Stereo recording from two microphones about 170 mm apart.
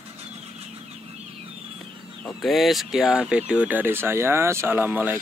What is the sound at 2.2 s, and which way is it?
Speech, centre (ahead or behind).